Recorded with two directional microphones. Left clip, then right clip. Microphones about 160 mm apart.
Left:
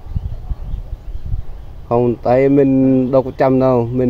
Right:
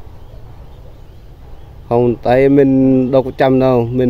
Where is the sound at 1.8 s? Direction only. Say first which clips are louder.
Right 2 dB; 15° right (ahead or behind).